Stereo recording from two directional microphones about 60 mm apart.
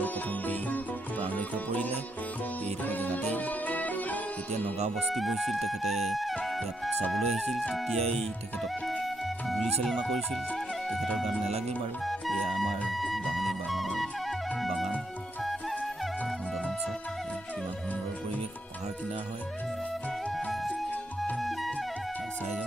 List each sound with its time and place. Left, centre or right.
0.0 s sitar: left
1.2 s music: left
5.0 s speech: centre
9.8 s speech: centre
12.1 s music: centre
21.4 s music: centre